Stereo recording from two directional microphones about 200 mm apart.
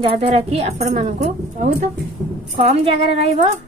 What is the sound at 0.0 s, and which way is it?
A woman's voice, 30° right (ahead or behind).